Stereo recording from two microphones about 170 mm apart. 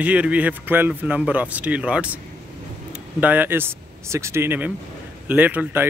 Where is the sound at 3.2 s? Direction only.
10° right (ahead or behind).